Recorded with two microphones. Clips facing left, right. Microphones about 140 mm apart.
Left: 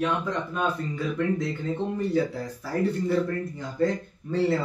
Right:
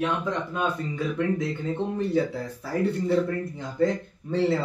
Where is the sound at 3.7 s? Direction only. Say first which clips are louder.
Right 1 dB; 20° right (ahead or behind).